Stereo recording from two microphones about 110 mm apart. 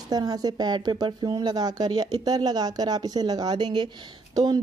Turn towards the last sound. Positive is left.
turn(degrees=-35)  # may be behind; listen again after turning